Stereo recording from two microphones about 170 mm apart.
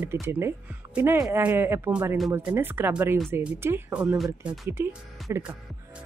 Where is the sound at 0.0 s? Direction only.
10° right (ahead or behind).